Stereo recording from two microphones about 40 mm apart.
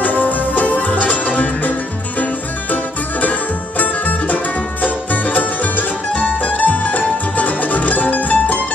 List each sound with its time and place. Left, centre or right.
0.0 s music: left
2.7 s music: left